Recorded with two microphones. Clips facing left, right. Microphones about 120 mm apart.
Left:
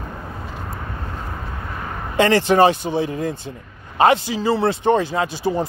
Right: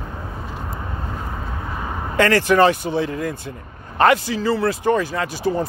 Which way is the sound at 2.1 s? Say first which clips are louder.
Left 1 dB; 20° left (ahead or behind).